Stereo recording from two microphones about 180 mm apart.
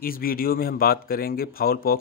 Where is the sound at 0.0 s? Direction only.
55° left (ahead or behind).